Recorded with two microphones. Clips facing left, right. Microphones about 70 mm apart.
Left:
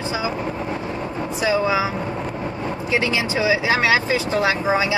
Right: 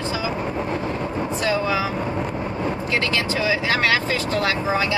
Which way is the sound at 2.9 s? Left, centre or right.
Centre.